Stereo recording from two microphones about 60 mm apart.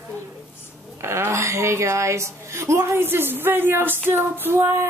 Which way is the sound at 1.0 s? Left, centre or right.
Right.